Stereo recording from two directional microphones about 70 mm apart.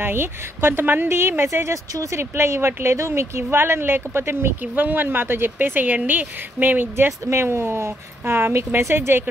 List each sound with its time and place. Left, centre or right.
0.0 s speech: right